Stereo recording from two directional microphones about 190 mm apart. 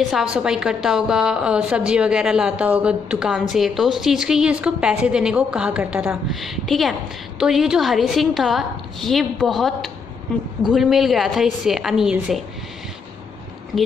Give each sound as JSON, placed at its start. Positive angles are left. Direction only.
{"t": 0.1, "sound": "a woman's voice", "side_deg": -5}
{"t": 13.7, "sound": "a woman's voice", "side_deg": 0}